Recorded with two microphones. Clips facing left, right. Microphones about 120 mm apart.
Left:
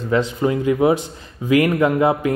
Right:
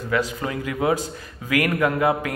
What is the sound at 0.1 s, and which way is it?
A man's voice, 25° left (ahead or behind).